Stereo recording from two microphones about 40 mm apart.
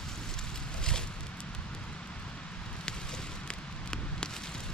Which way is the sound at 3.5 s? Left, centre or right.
Left.